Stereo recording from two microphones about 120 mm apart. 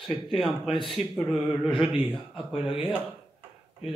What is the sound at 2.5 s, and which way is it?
Speech, 50° left (ahead or behind).